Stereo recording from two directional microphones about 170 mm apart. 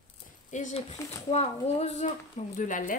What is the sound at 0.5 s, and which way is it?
Speech, 45° left (ahead or behind).